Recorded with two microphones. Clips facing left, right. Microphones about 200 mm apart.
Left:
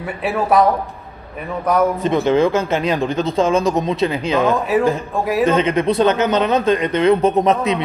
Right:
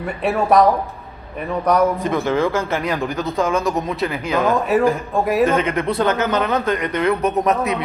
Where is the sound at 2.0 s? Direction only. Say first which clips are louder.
Left 4 dB; 20° left (ahead or behind).